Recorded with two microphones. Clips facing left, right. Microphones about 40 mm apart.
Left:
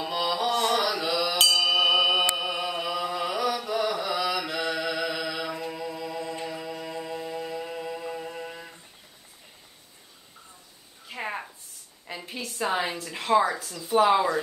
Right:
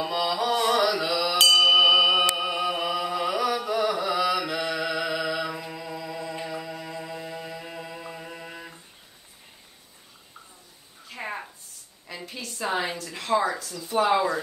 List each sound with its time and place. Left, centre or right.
0.0 s music: centre
0.5 s mantra: centre
0.7 s mantra: centre
2.3 s carnatic music: centre
11.1 s a sound: centre
12.3 s a sound: centre
12.6 s speech: centre
12.9 s a woman's voice: centre